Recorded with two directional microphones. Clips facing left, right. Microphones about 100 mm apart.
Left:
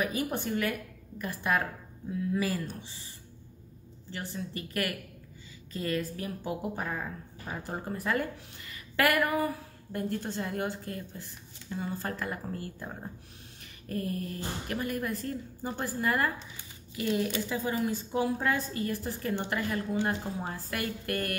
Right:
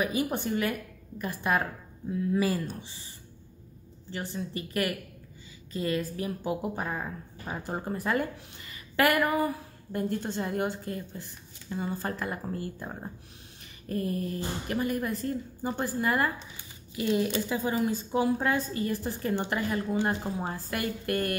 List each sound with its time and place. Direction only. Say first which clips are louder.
0.0 s speech: right 2 dB; 15° right (ahead or behind)
4.1 s speech: right 3 dB; 20° right (ahead or behind)